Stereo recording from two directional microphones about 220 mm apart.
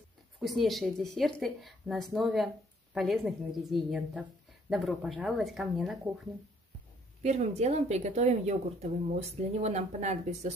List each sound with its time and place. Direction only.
0.4 s a woman's voice: centre (ahead or behind)
7.2 s speech: 30° right (ahead or behind)